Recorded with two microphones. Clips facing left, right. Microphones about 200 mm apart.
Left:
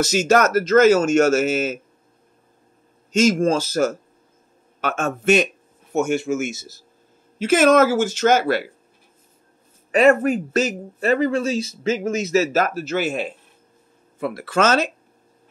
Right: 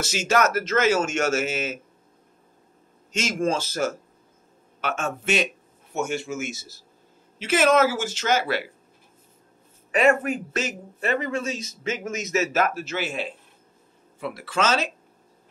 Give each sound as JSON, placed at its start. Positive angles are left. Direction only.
{"t": 0.0, "sound": "a man's voice", "side_deg": 40}
{"t": 3.1, "sound": "a man's voice", "side_deg": 40}
{"t": 9.8, "sound": "a man's voice", "side_deg": 35}